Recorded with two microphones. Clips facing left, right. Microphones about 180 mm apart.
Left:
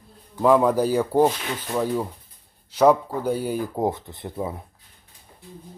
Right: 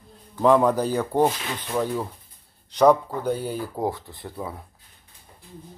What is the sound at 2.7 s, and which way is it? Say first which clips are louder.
Speech: even; 5° left (ahead or behind).